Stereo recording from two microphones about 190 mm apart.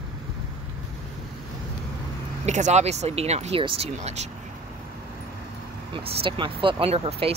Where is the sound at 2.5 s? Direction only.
40° right (ahead or behind).